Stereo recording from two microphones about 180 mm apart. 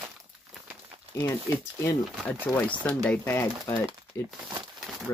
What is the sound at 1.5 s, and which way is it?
Speech, 15° left (ahead or behind).